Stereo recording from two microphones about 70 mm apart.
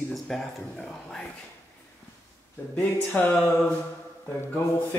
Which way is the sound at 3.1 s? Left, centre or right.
Left.